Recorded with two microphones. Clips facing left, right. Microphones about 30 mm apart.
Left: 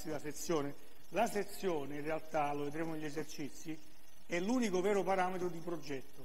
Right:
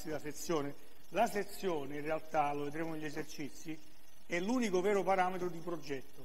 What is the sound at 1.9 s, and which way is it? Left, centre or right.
A man's voice, centre.